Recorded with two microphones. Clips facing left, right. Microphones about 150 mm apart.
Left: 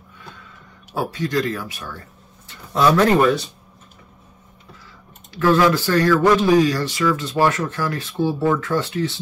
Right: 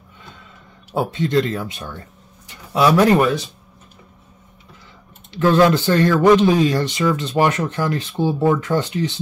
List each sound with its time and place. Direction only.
0.9 s speech: 25° right (ahead or behind)
2.7 s speech: 10° right (ahead or behind)
5.3 s speech: 25° right (ahead or behind)